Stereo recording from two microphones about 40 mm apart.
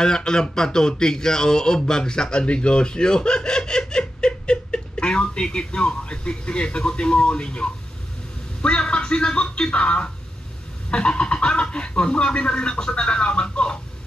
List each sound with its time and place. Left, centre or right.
0.0 s speech: centre